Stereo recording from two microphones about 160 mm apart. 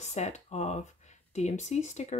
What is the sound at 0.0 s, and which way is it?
Speech, 45° left (ahead or behind).